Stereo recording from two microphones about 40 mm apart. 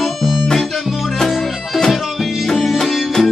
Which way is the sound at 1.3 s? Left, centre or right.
Centre.